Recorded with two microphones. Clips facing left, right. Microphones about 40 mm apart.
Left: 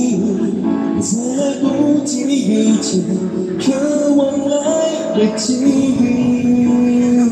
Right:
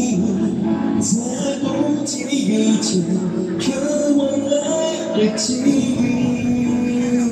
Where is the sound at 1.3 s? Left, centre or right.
Centre.